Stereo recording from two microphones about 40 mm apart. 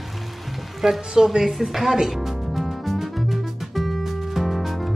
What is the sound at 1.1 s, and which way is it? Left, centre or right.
Speech, centre.